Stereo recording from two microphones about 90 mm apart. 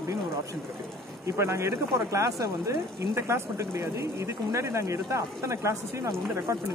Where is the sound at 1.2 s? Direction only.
30° right (ahead or behind).